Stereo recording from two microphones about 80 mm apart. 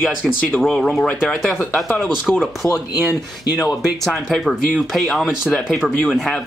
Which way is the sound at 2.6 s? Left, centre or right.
Left.